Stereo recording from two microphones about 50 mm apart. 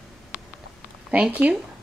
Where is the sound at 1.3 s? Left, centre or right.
Right.